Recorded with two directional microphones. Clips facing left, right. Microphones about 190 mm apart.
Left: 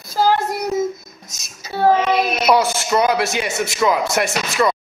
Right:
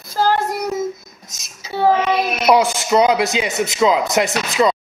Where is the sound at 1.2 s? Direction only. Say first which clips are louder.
Right 1 dB; centre (ahead or behind).